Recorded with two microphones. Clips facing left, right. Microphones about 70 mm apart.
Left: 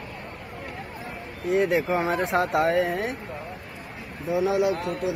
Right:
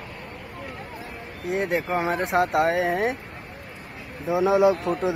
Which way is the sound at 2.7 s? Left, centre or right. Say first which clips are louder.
Right 1 dB; right.